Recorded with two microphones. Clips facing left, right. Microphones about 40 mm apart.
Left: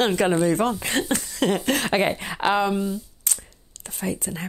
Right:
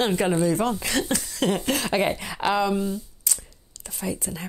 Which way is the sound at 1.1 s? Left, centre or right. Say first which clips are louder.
Left 2 dB; left.